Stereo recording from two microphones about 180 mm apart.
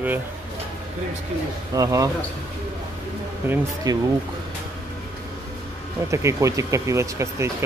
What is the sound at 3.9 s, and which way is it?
Speech, 20° right (ahead or behind).